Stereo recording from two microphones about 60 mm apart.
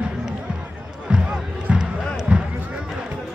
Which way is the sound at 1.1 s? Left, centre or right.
Centre.